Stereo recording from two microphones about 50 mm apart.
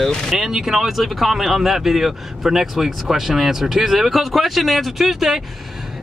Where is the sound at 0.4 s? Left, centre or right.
Centre.